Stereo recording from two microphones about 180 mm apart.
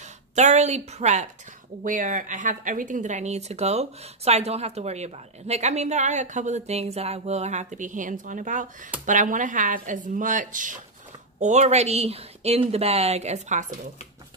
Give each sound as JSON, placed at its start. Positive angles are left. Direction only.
{"t": 0.4, "sound": "speech", "side_deg": -40}